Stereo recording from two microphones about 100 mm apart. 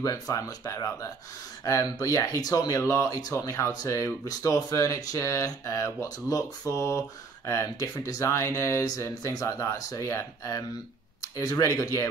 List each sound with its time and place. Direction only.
0.0 s speech: 35° left (ahead or behind)